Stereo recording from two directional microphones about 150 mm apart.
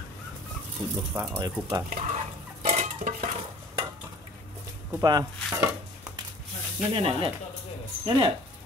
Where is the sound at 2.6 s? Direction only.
55° right (ahead or behind).